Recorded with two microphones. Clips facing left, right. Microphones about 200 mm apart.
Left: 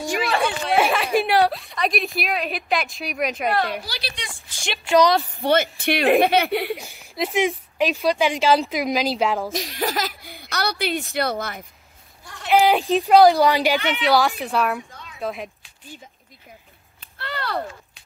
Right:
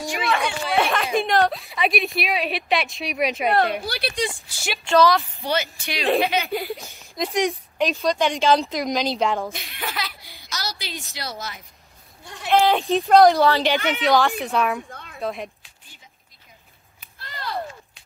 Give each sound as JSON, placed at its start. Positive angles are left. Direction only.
{"t": 0.7, "sound": "a woman's voice", "side_deg": 5}
{"t": 3.5, "sound": "a woman's voice", "side_deg": -50}
{"t": 4.4, "sound": "a woman's voice", "side_deg": -5}
{"t": 4.8, "sound": "speech", "side_deg": 15}
{"t": 5.4, "sound": "speech", "side_deg": 55}
{"t": 6.8, "sound": "speech", "side_deg": 10}
{"t": 9.5, "sound": "speech", "side_deg": 35}
{"t": 12.4, "sound": "speech", "side_deg": 10}
{"t": 13.7, "sound": "a woman's voice", "side_deg": -45}
{"t": 14.0, "sound": "speech", "side_deg": 5}
{"t": 14.9, "sound": "a sound", "side_deg": -55}
{"t": 15.1, "sound": "speech", "side_deg": 0}
{"t": 17.2, "sound": "a sound", "side_deg": 70}